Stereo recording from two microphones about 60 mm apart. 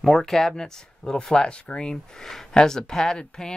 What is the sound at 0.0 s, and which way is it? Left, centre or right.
Speech, centre.